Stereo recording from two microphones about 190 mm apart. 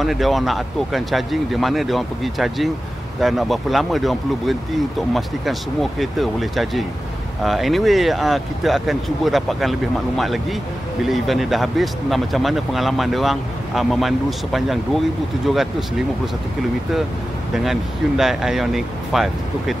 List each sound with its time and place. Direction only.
0.0 s speech: centre (ahead or behind)
17.6 s speech: centre (ahead or behind)